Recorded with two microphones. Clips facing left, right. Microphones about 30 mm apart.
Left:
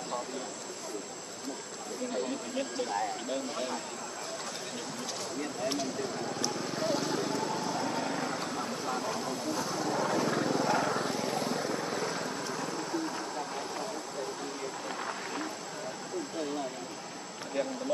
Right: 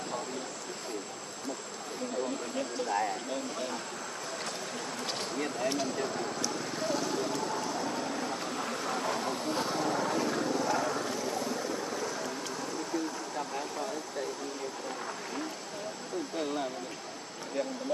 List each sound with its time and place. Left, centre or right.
6.7 s vehicle: centre
9.9 s vehicle: centre
10.3 s vehicle: centre
10.6 s vehicle: left